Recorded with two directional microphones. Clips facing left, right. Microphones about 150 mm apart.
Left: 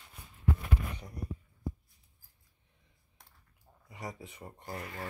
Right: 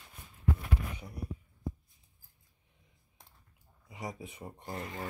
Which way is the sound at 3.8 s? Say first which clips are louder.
Right 2 dB; 20° right (ahead or behind).